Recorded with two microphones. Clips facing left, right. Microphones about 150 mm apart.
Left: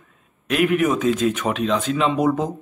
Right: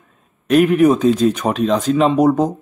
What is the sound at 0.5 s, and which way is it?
Speech, 40° right (ahead or behind).